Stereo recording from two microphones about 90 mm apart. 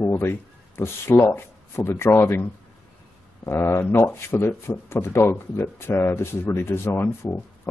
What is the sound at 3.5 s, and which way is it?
Speech, 25° left (ahead or behind).